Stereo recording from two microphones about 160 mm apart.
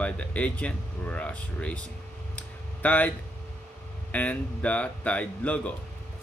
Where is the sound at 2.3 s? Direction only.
10° left (ahead or behind).